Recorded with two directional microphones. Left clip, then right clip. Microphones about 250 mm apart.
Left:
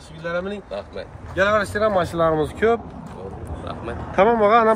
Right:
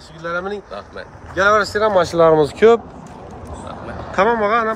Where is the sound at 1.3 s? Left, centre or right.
Centre.